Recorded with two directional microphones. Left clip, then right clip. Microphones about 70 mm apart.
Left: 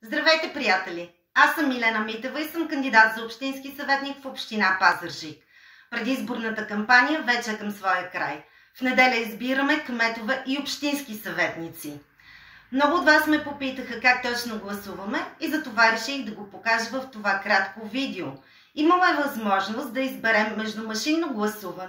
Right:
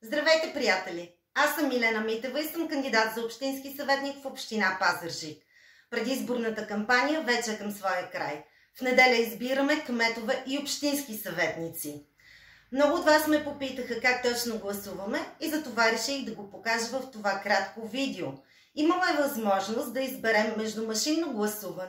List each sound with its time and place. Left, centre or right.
0.1 s a woman's voice: right
6.5 s a woman's voice: right